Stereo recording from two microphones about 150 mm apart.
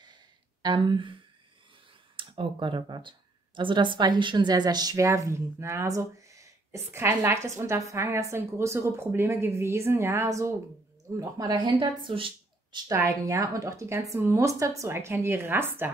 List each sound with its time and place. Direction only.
0.0 s sigh: 30° right (ahead or behind)
2.1 s speech: 35° right (ahead or behind)
12.7 s a woman's voice: 25° right (ahead or behind)